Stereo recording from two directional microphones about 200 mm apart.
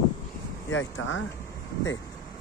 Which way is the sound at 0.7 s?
75° left (ahead or behind).